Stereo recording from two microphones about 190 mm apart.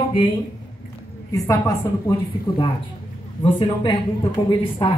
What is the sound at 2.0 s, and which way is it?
Speech, 25° left (ahead or behind).